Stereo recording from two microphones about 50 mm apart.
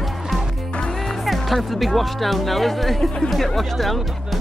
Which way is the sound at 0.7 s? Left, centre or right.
Centre.